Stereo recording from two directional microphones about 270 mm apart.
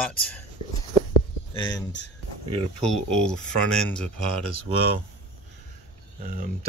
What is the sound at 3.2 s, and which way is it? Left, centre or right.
Speech, centre.